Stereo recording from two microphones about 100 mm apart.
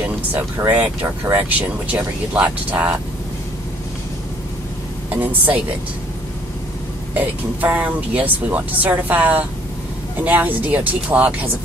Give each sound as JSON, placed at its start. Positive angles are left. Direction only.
{"t": 0.3, "sound": "speech", "side_deg": -15}
{"t": 5.1, "sound": "speech", "side_deg": -15}
{"t": 7.2, "sound": "speech", "side_deg": -15}